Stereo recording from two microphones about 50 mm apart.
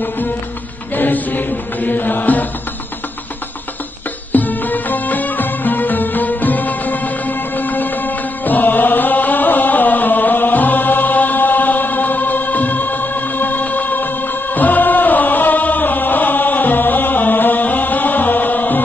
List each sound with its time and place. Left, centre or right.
0.9 s chant: left
4.3 s music: left
14.5 s chant: left